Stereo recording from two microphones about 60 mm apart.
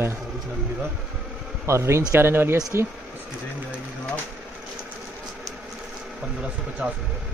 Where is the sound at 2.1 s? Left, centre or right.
Right.